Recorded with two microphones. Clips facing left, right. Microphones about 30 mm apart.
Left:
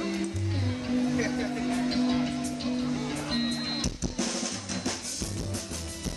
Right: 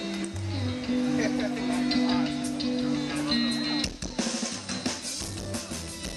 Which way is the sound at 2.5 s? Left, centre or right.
Right.